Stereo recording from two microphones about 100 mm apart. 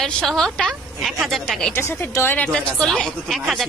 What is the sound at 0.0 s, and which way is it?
Speech, 5° left (ahead or behind).